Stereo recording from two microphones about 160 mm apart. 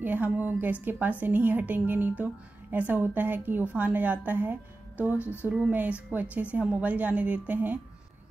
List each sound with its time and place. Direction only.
0.0 s a woman's voice: 10° right (ahead or behind)